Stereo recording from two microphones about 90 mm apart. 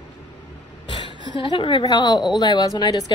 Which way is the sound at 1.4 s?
70° left (ahead or behind).